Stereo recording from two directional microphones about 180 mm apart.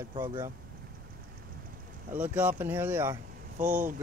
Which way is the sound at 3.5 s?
45° right (ahead or behind).